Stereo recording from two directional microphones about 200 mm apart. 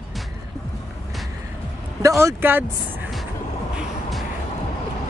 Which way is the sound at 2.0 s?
15° right (ahead or behind).